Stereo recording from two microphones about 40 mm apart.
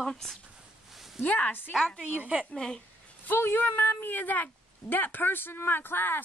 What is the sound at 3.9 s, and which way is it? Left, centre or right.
Speech, left.